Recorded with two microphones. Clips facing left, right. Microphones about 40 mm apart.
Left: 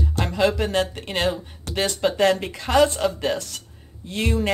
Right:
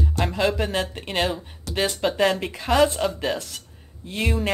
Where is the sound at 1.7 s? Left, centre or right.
Left.